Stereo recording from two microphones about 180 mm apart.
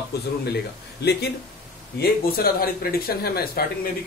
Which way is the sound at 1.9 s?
55° left (ahead or behind).